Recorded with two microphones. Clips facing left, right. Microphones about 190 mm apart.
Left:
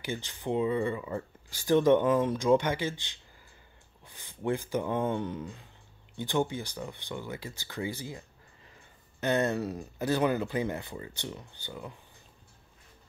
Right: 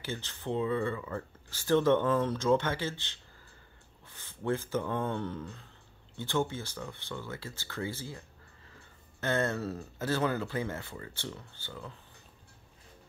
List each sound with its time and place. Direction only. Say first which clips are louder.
0.0 s speech: left 3 dB; 15° left (ahead or behind)